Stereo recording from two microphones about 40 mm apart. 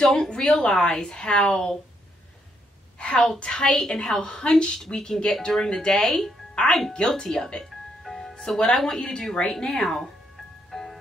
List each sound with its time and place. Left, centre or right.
0.0 s a woman's voice: centre
3.0 s a woman's voice: left
4.7 s speech: centre
6.5 s music: centre
6.9 s a woman's voice: centre
8.0 s music: centre
8.4 s speech: centre
10.7 s ice cream truck: centre